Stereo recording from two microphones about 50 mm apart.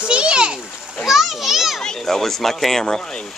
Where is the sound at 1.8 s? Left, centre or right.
Centre.